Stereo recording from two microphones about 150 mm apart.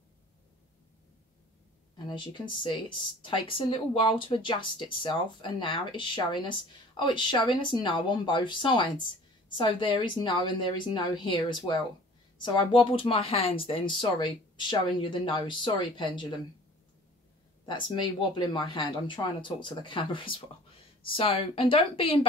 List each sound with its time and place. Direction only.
2.0 s speech: 30° left (ahead or behind)
17.6 s speech: 30° left (ahead or behind)